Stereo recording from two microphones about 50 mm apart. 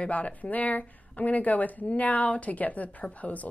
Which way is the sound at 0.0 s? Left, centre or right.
Left.